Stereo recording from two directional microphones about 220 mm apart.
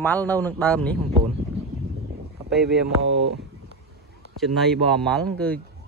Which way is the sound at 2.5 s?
Centre (ahead or behind).